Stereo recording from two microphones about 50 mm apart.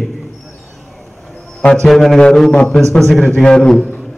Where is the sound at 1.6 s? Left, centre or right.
Centre.